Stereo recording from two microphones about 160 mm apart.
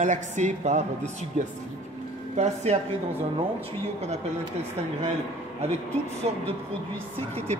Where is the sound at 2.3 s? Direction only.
45° right (ahead or behind).